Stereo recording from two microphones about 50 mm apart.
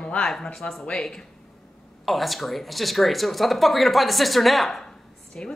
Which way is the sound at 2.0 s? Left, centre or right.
Centre.